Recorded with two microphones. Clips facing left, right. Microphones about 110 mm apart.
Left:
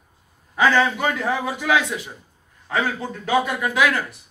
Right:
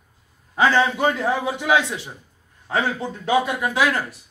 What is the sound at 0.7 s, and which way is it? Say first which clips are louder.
A man's voice: right 1 dB; 20° right (ahead or behind).